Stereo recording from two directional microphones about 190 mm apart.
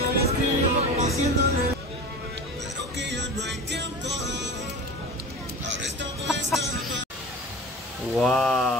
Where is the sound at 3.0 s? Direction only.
65° right (ahead or behind).